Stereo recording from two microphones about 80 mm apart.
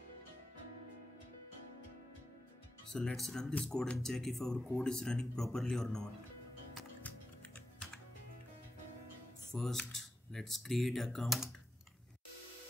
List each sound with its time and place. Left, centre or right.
2.9 s speech: centre
7.0 s music: left
9.6 s speech: centre